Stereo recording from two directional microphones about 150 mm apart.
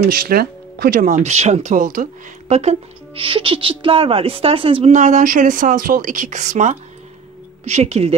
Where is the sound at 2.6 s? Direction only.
40° right (ahead or behind).